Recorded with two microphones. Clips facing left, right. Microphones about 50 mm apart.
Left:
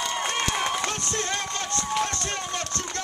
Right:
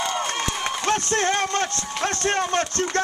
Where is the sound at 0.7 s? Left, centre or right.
Right.